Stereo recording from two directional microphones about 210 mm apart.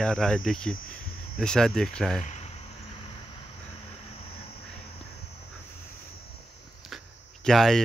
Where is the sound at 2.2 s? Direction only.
35° left (ahead or behind).